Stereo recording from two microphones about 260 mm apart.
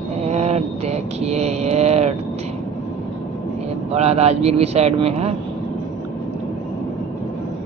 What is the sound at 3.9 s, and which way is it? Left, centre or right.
Mantra, right.